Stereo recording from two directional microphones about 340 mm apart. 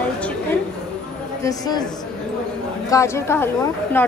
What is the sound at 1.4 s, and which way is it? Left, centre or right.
Speech, centre.